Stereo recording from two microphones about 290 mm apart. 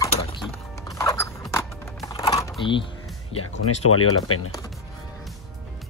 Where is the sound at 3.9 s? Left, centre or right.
Left.